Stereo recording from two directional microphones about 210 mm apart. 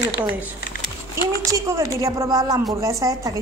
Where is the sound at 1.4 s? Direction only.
15° right (ahead or behind).